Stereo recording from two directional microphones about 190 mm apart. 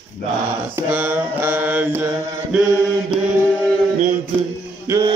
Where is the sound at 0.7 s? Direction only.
10° right (ahead or behind).